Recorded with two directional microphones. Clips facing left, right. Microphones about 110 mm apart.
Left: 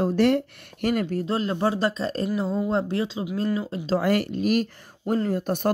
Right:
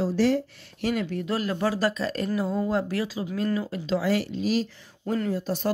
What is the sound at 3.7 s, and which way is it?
Speech, 35° left (ahead or behind).